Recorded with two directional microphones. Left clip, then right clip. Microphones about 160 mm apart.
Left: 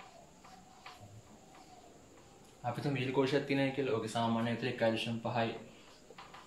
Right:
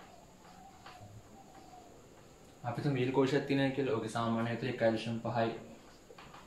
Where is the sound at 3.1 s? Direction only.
25° right (ahead or behind).